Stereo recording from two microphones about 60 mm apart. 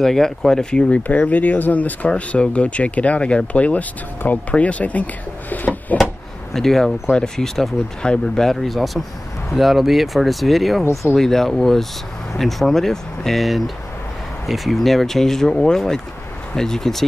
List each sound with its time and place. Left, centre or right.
0.0 s speech: centre
1.0 s speech: left
5.9 s a sound: left
6.5 s speech: centre
7.4 s speech: centre